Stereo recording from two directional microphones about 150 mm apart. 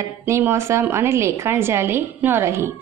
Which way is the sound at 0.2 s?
15° right (ahead or behind).